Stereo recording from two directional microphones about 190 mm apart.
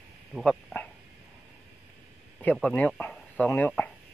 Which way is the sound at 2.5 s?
5° left (ahead or behind).